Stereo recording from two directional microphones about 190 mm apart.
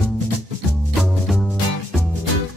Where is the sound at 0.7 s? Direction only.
Centre (ahead or behind).